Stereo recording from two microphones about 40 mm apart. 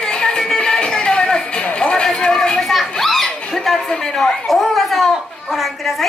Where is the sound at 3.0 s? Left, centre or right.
Centre.